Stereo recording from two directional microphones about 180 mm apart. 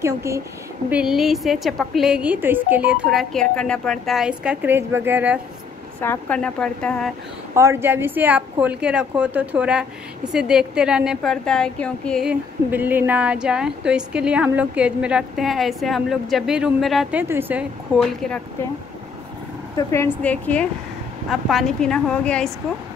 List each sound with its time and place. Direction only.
0.0 s a woman's voice: 15° right (ahead or behind)
0.8 s a woman's voice: 5° right (ahead or behind)
5.9 s a woman's voice: 10° left (ahead or behind)
7.5 s a woman's voice: 15° right (ahead or behind); by 18.4 s centre (ahead or behind)
19.9 s a woman's voice: 10° left (ahead or behind)